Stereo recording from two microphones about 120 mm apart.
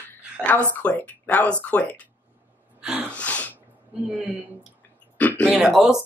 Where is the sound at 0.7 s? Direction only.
15° left (ahead or behind).